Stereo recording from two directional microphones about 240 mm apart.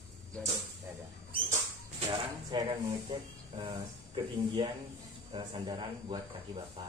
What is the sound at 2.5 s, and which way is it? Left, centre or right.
Speech, centre.